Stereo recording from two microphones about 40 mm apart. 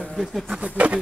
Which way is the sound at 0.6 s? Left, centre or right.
Right.